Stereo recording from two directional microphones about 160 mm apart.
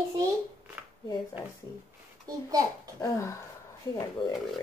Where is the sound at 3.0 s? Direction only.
20° left (ahead or behind).